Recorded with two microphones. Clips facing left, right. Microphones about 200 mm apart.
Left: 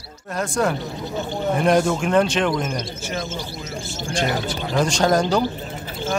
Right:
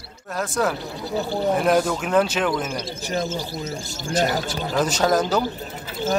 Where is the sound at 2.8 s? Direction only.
35° right (ahead or behind).